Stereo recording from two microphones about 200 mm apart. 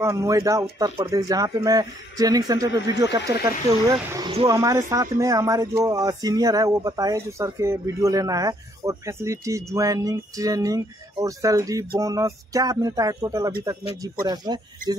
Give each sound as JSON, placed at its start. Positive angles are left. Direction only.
{"t": 0.0, "sound": "speech", "side_deg": -15}